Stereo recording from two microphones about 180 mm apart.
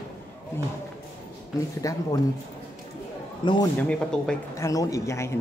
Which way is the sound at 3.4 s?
25° left (ahead or behind).